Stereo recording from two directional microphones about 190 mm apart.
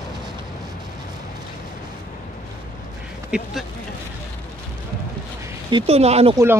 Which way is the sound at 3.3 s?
Centre (ahead or behind).